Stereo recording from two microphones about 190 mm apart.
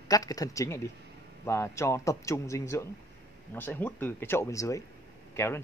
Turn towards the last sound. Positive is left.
turn(degrees=15)  # may be behind; listen again after turning